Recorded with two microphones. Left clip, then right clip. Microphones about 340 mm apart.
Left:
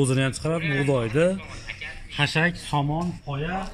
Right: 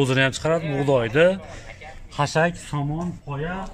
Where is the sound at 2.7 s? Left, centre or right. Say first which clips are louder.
Left 5 dB; centre.